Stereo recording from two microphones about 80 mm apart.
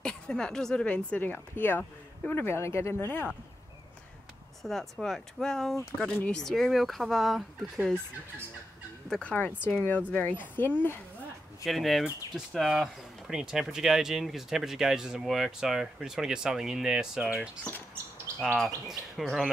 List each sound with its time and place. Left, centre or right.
0.0 s speech: centre; by 3.3 s left
4.6 s speech: centre
5.0 s speech: centre
5.9 s speech: centre
6.4 s speech: centre
9.1 s speech: centre
11.6 s speech: centre